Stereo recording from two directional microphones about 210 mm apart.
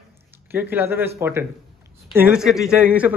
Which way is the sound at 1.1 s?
10° right (ahead or behind).